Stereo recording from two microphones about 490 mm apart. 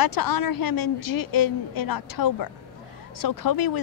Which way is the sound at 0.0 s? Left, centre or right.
Left.